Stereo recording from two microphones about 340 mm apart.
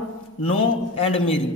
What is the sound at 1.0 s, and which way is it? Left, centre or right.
Speech, centre.